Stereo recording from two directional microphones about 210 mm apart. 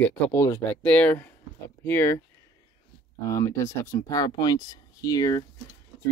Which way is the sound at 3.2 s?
15° left (ahead or behind).